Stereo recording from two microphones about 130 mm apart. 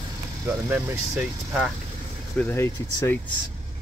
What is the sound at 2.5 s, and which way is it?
Speech, 15° left (ahead or behind).